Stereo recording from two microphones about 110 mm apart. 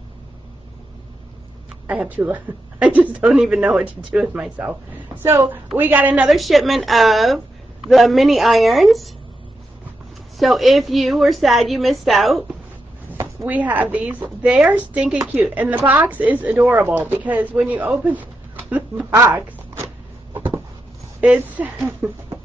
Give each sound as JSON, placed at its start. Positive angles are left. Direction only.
{"t": 1.9, "sound": "a woman's voice", "side_deg": -15}
{"t": 6.3, "sound": "a woman's voice", "side_deg": 0}
{"t": 10.3, "sound": "a woman's voice", "side_deg": 0}
{"t": 13.5, "sound": "speech", "side_deg": -15}
{"t": 20.3, "sound": "a sound", "side_deg": -20}
{"t": 21.2, "sound": "speech", "side_deg": -15}